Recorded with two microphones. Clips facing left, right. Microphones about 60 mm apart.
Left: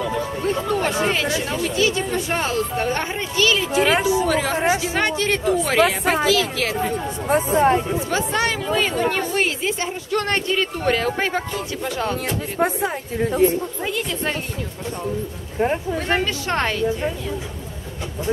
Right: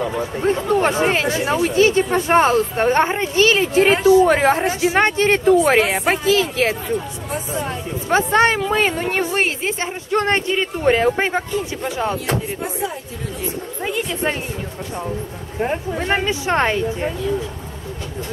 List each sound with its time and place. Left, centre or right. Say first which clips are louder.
0.7 s speech: right 5 dB; right
6.8 s speech: left 1 dB; left
8.1 s speech: right 9 dB; right
12.5 s speech: left 4 dB; left
13.8 s a woman's voice: right 7 dB; centre
15.6 s speech: left 1 dB; centre
16.0 s speech: right 2 dB; centre